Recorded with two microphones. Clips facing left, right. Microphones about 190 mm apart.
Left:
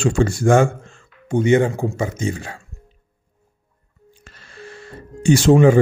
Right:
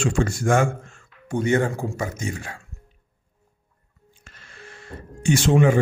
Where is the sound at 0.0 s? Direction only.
30° left (ahead or behind).